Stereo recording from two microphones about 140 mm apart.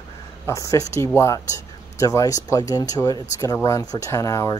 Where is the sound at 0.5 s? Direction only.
25° left (ahead or behind).